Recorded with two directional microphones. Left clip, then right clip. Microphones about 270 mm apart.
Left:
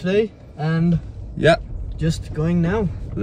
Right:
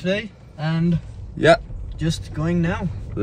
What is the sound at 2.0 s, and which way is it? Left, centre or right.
Speech, centre.